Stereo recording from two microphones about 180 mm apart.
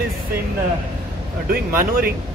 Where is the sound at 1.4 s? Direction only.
55° right (ahead or behind).